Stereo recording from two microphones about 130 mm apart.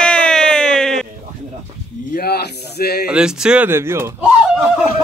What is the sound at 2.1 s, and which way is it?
Speech, 90° left.